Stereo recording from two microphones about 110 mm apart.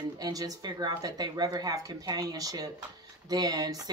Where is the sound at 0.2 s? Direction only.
35° right (ahead or behind).